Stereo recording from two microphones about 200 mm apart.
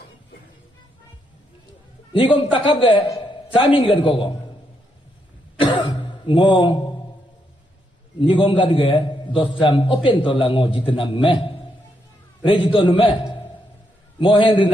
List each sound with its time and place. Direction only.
2.1 s a man's voice: 25° left (ahead or behind)
5.6 s throat clearing: 20° left (ahead or behind)
8.2 s a man's voice: 25° left (ahead or behind)